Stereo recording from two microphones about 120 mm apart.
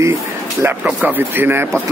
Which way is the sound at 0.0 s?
25° right (ahead or behind).